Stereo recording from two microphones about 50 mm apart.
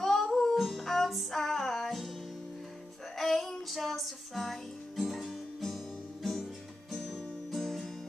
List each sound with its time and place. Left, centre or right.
0.0 s music: centre
3.2 s music: centre
7.5 s music: centre